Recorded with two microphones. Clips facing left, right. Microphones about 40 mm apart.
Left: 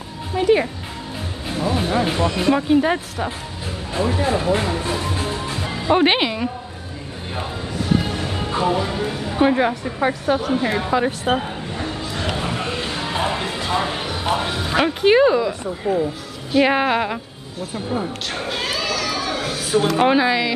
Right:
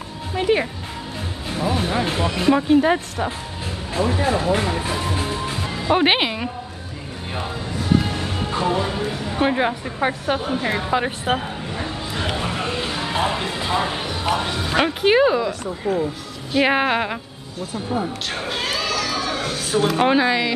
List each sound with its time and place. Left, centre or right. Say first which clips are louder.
0.3 s speech: left 3 dB; centre
7.3 s music: left 1 dB; centre
9.0 s speech: left 3 dB; centre
10.0 s a woman's voice: left 2 dB; centre
11.3 s a sound: left 2 dB; centre
12.4 s music: even; centre
14.4 s speech: left 1 dB; centre
15.8 s speech: left 2 dB; centre
16.5 s speech: left 1 dB; centre